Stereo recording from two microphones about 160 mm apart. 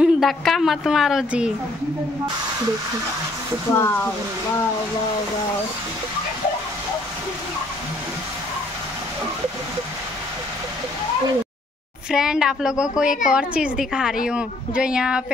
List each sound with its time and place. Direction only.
0.0 s a woman's voice: centre (ahead or behind)
3.7 s speech: 15° left (ahead or behind)
12.1 s a woman's voice: 5° right (ahead or behind)